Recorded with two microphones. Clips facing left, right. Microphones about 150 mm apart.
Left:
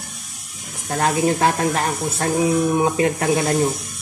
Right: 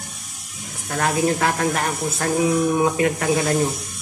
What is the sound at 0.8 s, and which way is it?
Speech, 25° left (ahead or behind).